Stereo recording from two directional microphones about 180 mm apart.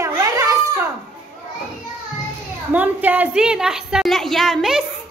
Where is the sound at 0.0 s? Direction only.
20° right (ahead or behind).